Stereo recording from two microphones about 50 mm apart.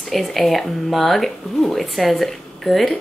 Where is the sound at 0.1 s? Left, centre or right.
Centre.